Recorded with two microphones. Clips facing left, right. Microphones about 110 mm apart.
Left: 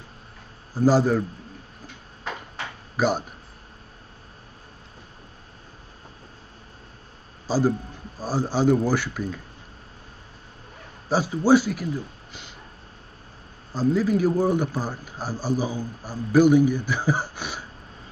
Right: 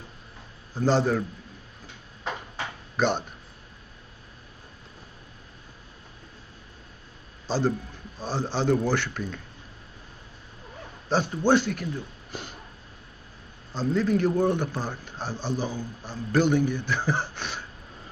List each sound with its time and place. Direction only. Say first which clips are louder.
0.7 s a man's voice: left 4 dB; 5° left (ahead or behind)
3.0 s a man's voice: left 2 dB; 5° left (ahead or behind)
7.4 s a man's voice: left 3 dB; 10° left (ahead or behind)
11.1 s a man's voice: left 4 dB; 5° left (ahead or behind)
12.3 s a sound: right 5 dB; 45° right (ahead or behind)
13.7 s a man's voice: left 3 dB; 5° left (ahead or behind)